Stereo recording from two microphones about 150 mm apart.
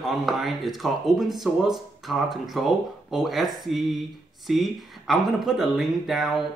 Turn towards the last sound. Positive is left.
turn(degrees=0)  # may be behind; listen again after turning